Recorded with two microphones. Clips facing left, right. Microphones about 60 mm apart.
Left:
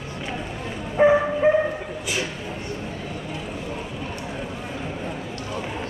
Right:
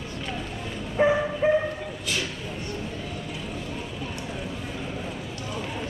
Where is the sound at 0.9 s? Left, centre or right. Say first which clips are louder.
Left 5 dB; centre.